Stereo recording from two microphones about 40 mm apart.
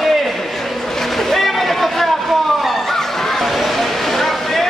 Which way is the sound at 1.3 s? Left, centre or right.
Centre.